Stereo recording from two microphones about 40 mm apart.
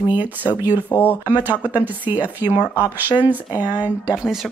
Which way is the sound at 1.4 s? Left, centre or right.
Right.